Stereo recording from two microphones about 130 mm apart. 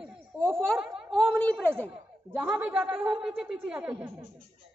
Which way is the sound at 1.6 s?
15° right (ahead or behind).